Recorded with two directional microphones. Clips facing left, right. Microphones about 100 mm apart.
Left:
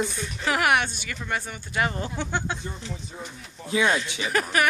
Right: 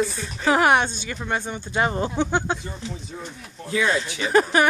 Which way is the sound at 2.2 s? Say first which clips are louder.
Right 7 dB; 15° right (ahead or behind).